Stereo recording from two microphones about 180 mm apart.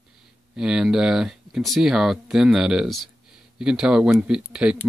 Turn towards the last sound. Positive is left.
turn(degrees=-5)  # may be behind; listen again after turning